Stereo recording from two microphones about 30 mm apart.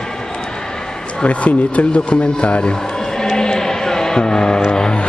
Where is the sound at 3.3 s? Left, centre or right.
Left.